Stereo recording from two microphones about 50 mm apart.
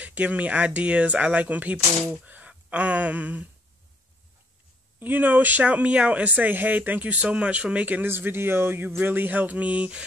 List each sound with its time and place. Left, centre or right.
0.0 s speech: right
5.0 s speech: right
8.0 s speech: right